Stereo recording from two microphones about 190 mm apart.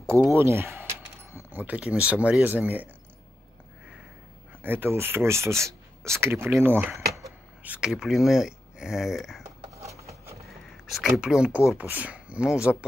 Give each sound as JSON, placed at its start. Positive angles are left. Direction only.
{"t": 0.3, "sound": "speech", "side_deg": -15}
{"t": 4.6, "sound": "speech", "side_deg": -10}
{"t": 9.8, "sound": "a sound", "side_deg": -15}
{"t": 10.9, "sound": "speech", "side_deg": 0}